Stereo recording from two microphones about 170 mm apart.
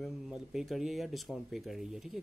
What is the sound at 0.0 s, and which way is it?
Speech, centre (ahead or behind).